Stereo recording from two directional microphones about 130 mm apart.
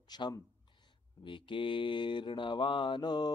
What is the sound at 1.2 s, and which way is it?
Mantra, 40° left (ahead or behind).